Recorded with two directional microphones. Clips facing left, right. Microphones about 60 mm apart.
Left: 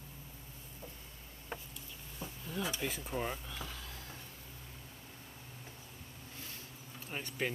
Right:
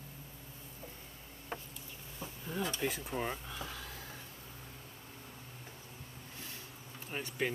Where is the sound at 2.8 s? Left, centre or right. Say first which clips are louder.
Right 1 dB; centre.